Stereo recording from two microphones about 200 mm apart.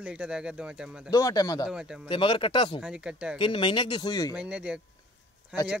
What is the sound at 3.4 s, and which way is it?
Speech, 25° left (ahead or behind).